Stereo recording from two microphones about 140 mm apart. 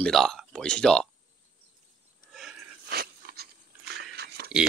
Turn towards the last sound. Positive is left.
turn(degrees=-5)  # may be behind; listen again after turning